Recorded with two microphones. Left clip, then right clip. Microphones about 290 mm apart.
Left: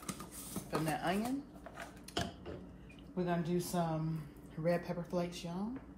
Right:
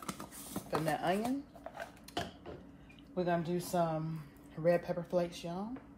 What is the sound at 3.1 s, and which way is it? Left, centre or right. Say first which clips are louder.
Speech: right 3 dB; right.